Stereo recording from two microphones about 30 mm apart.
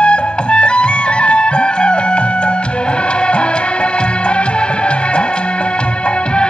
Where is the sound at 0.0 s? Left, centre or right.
Left.